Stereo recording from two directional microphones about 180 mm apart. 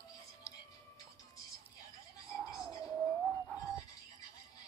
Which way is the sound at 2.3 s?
5° right (ahead or behind).